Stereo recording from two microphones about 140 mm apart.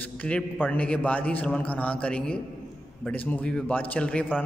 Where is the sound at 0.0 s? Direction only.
10° left (ahead or behind).